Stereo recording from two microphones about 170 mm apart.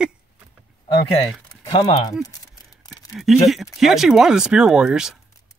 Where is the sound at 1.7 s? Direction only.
25° left (ahead or behind).